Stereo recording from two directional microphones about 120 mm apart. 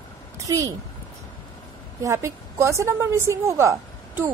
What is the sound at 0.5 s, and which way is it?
Speech, 30° right (ahead or behind).